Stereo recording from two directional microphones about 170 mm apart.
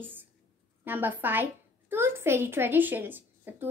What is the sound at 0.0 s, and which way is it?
A woman's voice, 10° right (ahead or behind).